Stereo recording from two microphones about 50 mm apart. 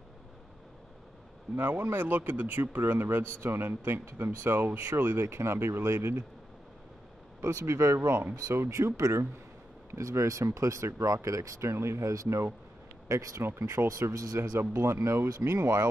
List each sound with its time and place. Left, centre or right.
1.6 s speech: right
5.2 s speech: right
7.4 s speech: right
8.1 s speech: right
8.6 s speech: right
13.4 s speech: right
14.6 s speech: right